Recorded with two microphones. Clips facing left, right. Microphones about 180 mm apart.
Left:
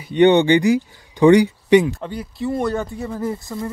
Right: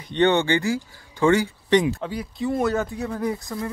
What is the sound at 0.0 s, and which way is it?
Speech, 10° left (ahead or behind).